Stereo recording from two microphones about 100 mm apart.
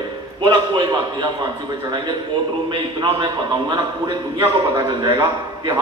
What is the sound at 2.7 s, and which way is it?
Speech, 45° right (ahead or behind).